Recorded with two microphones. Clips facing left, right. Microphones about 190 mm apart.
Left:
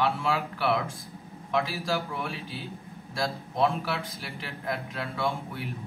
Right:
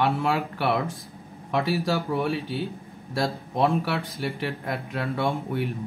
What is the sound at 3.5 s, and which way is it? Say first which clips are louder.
A man's voice: right 3 dB; 65° right (ahead or behind).